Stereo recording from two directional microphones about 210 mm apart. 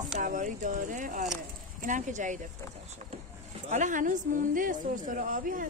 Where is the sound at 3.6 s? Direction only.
35° right (ahead or behind).